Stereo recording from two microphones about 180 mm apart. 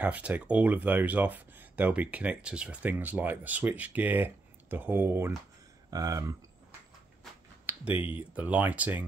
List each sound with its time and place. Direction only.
0.0 s speech: 10° right (ahead or behind)
7.6 s computer keyboard: 10° right (ahead or behind)
8.2 s speech: 10° right (ahead or behind)